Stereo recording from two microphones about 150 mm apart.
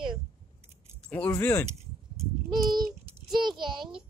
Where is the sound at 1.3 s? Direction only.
15° left (ahead or behind).